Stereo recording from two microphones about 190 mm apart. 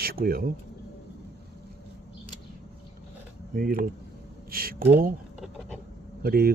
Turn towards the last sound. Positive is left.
turn(degrees=-55)  # may be behind; listen again after turning